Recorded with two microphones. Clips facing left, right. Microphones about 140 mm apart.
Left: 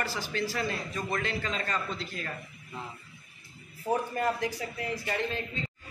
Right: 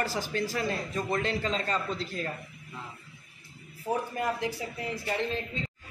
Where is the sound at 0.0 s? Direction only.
40° right (ahead or behind).